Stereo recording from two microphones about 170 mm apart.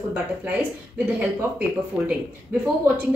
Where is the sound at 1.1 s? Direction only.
10° right (ahead or behind).